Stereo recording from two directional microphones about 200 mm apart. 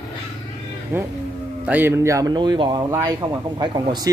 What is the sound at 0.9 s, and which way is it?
Speech, 10° right (ahead or behind).